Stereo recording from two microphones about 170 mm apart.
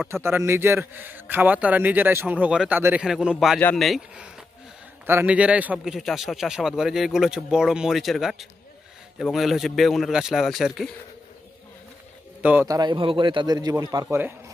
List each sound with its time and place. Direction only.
0.1 s a man's voice: 15° right (ahead or behind)
12.4 s a man's voice: 10° right (ahead or behind)
12.6 s speech: 25° right (ahead or behind)
14.0 s a man's voice: 10° right (ahead or behind)